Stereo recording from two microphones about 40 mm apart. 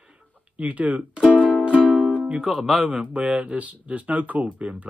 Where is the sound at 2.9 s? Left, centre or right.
Right.